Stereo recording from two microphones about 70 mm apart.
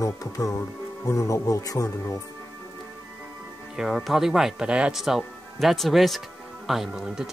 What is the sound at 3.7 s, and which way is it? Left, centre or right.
Speech, centre.